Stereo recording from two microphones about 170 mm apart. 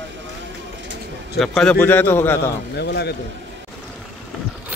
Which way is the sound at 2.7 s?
75° left (ahead or behind).